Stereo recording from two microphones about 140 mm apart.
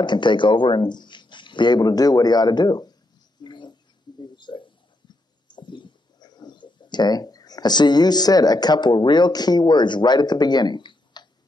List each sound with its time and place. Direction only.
0.0 s speech: 35° left (ahead or behind)
3.4 s bird: 35° left (ahead or behind)
4.2 s a sound: 35° left (ahead or behind)
5.5 s speech: 35° left (ahead or behind)